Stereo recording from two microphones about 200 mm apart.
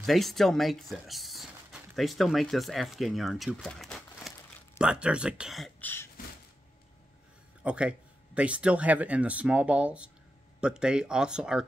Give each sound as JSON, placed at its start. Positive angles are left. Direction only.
{"t": 0.0, "sound": "speech", "side_deg": 0}
{"t": 7.6, "sound": "speech", "side_deg": -5}